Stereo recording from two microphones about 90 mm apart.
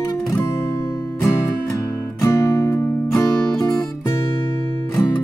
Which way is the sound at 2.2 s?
35° left (ahead or behind).